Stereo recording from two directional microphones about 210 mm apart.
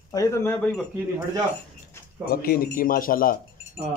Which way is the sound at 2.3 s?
45° left (ahead or behind).